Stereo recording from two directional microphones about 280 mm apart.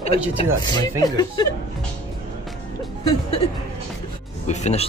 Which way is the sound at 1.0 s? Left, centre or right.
Centre.